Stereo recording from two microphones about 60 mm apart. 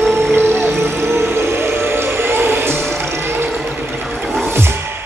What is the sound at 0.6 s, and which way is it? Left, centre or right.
Music, right.